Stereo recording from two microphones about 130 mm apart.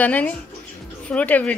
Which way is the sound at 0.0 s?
10° left (ahead or behind).